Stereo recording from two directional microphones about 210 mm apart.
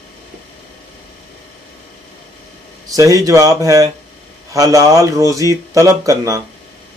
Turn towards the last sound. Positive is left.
turn(degrees=-15)  # may be behind; listen again after turning